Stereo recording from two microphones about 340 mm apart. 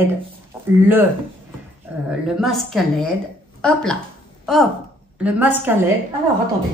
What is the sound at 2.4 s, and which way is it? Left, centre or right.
A woman's voice, centre.